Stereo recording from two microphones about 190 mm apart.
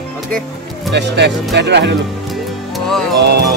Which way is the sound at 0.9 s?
65° right (ahead or behind).